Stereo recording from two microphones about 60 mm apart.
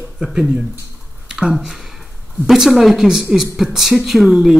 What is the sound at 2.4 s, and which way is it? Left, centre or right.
A woman's voice, centre.